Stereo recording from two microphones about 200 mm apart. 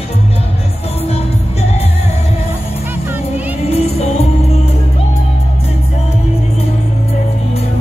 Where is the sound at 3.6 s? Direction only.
30° left (ahead or behind).